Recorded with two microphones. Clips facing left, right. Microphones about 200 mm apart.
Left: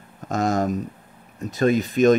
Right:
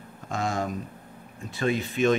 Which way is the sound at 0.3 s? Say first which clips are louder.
Left 7 dB; 40° left (ahead or behind).